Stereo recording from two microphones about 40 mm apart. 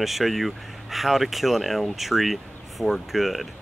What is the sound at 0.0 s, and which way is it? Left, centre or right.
Speech, centre.